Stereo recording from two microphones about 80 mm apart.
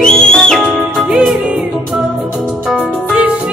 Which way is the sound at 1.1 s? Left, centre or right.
Centre.